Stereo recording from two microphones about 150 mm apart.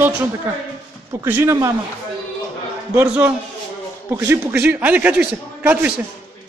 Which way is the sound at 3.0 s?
10° right (ahead or behind).